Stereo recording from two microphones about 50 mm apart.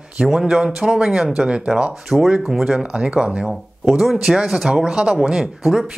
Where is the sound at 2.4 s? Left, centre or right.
Centre.